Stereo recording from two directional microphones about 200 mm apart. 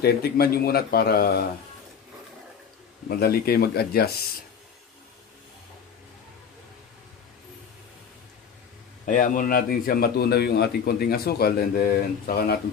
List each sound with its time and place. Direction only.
0.0 s a man's voice: 50° left (ahead or behind)
3.1 s a man's voice: 50° left (ahead or behind)
9.0 s a man's voice: 40° left (ahead or behind)